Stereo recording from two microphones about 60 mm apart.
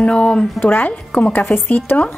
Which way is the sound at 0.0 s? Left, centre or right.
Centre.